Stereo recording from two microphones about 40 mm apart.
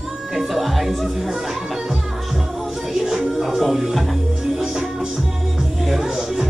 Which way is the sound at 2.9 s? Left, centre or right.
Centre.